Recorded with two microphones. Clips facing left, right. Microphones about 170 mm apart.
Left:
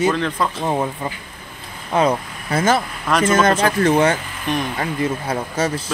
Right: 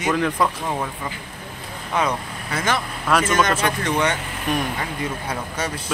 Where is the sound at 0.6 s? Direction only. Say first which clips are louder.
Left 5 dB; 30° left (ahead or behind).